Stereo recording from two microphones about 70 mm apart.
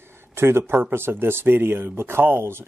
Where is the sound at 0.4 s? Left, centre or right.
Right.